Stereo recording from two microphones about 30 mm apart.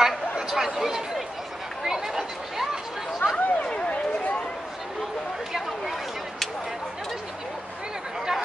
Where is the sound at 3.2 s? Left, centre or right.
Left.